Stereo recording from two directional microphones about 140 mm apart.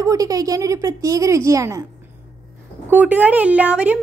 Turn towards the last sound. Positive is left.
turn(degrees=-10)  # may be behind; listen again after turning